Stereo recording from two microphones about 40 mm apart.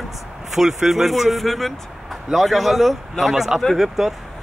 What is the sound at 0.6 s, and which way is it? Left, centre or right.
Speech, centre.